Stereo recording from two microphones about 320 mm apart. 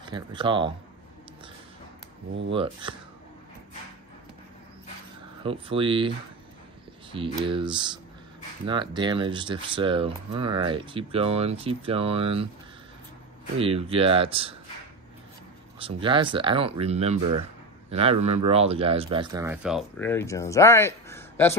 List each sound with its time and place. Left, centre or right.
0.0 s speech: centre
2.5 s speech: centre
5.4 s speech: centre
7.4 s speech: centre
13.6 s speech: centre
15.8 s speech: centre